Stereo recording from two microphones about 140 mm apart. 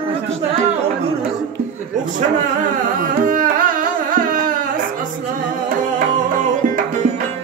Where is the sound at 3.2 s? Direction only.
75° right (ahead or behind).